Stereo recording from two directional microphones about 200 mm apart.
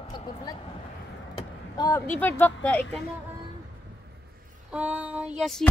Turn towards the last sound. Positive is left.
turn(degrees=0)  # may be behind; listen again after turning